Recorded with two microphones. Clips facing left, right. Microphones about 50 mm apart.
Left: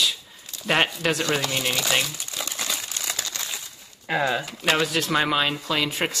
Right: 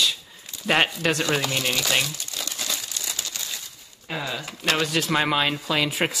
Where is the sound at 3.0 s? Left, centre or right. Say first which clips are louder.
Left 2 dB; left.